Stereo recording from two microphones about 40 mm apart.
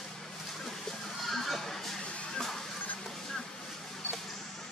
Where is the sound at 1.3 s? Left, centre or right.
Centre.